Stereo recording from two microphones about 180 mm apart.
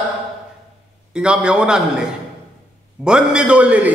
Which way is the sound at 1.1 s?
5° right (ahead or behind).